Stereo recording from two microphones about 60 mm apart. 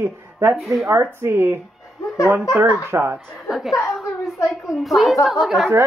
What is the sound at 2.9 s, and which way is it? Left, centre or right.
Speech, right.